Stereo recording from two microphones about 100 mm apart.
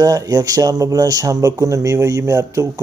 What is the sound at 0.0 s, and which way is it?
Speech, 35° right (ahead or behind).